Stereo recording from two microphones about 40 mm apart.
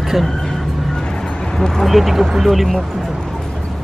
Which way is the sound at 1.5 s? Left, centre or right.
Centre.